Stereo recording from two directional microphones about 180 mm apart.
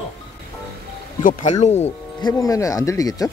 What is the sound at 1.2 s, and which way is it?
Speech, 50° left (ahead or behind).